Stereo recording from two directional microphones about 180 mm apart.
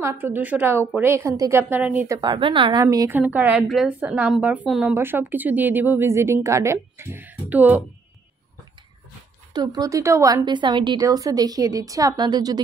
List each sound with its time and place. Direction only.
0.0 s a woman's voice: 10° right (ahead or behind)
3.2 s a woman's voice: 10° right (ahead or behind)
9.5 s a woman's voice: 25° right (ahead or behind)